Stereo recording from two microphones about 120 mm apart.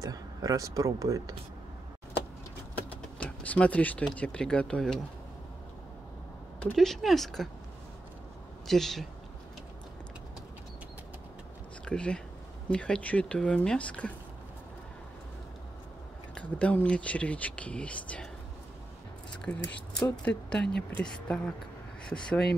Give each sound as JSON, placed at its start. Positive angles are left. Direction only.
{"t": 0.0, "sound": "speech", "side_deg": -30}
{"t": 3.2, "sound": "speech", "side_deg": 10}
{"t": 6.6, "sound": "speech", "side_deg": 5}
{"t": 8.6, "sound": "speech", "side_deg": 5}
{"t": 11.8, "sound": "speech", "side_deg": 10}
{"t": 16.3, "sound": "speech", "side_deg": 10}
{"t": 19.5, "sound": "speech", "side_deg": 10}